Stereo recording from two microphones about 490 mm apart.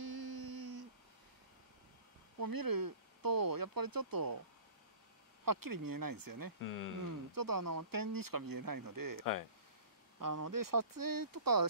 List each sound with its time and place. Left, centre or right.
0.0 s a sound: right
2.3 s speech: right
5.4 s speech: right
6.6 s speech: left
7.0 s speech: right
9.2 s speech: left
10.1 s speech: right